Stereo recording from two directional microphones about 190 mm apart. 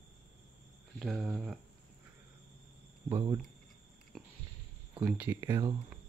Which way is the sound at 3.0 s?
15° right (ahead or behind).